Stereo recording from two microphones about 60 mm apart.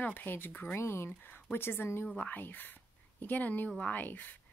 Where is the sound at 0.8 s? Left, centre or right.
Left.